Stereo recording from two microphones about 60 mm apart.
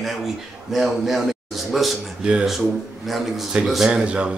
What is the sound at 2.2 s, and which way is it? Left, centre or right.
Speech, centre.